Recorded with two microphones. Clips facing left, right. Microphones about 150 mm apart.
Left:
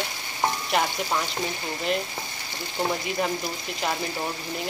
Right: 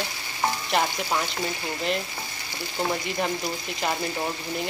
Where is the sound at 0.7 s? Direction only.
Centre (ahead or behind).